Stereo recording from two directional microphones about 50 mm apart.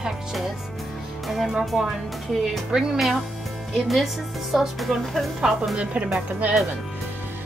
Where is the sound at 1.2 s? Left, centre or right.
Centre.